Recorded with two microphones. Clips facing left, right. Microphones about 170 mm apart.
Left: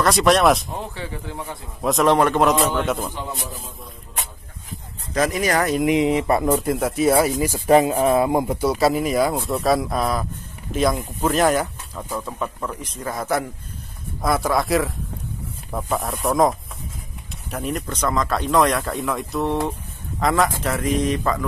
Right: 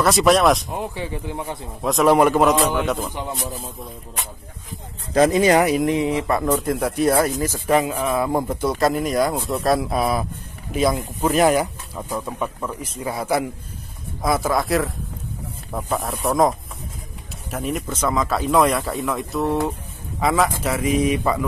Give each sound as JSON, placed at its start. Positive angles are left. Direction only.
{"t": 0.0, "sound": "speech", "side_deg": 0}
{"t": 0.7, "sound": "speech", "side_deg": -15}
{"t": 1.8, "sound": "speech", "side_deg": 0}
{"t": 5.1, "sound": "speech", "side_deg": -25}
{"t": 5.9, "sound": "speech", "side_deg": 20}
{"t": 6.5, "sound": "speech", "side_deg": 0}
{"t": 7.7, "sound": "speech", "side_deg": 30}
{"t": 8.3, "sound": "speech", "side_deg": 10}